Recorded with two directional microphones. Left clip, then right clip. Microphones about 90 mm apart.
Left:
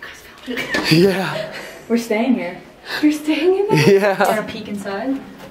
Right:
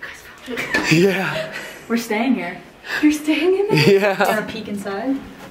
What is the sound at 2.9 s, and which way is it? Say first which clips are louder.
A woman's voice: even; centre (ahead or behind).